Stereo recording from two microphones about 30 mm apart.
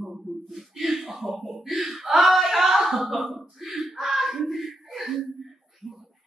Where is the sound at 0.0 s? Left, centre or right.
Centre.